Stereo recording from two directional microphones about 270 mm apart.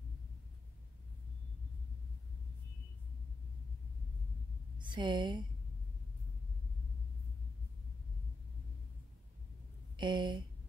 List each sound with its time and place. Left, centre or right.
4.7 s a woman's voice: centre
9.9 s speech: centre